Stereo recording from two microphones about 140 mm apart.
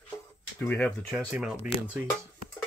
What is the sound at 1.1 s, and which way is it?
Speech, 5° right (ahead or behind).